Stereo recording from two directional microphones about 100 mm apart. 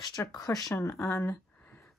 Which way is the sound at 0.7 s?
25° left (ahead or behind).